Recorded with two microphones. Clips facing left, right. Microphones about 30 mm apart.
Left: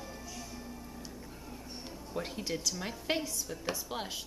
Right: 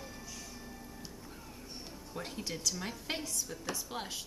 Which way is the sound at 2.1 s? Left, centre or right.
Centre.